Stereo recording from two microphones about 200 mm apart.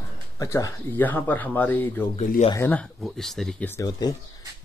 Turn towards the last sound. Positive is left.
turn(degrees=20)  # may be behind; listen again after turning